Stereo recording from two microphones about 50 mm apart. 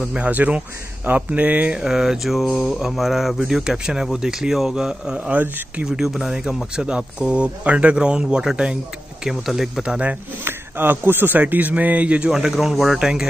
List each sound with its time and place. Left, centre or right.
0.4 s speech: right
1.8 s mantra: centre
2.8 s speech: centre; by 5.4 s right
5.9 s speech: centre
9.2 s mantra: centre
9.8 s speech: right
10.4 s speech: right
12.5 s mantra: centre
13.0 s speech: centre